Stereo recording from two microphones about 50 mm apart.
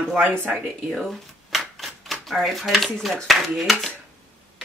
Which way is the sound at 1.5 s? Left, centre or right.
Centre.